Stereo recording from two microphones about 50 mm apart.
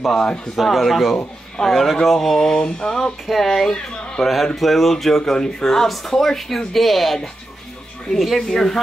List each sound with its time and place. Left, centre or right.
0.1 s a sound: centre
0.6 s speech: centre
2.1 s a sound: centre
3.3 s speech: centre
3.7 s speech: centre
4.2 s speech: centre